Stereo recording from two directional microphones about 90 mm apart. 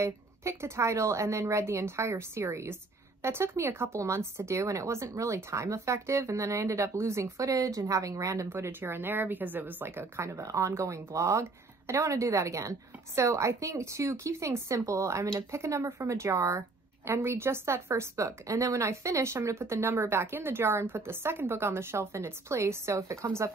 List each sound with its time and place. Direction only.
0.0 s a woman's voice: 30° right (ahead or behind)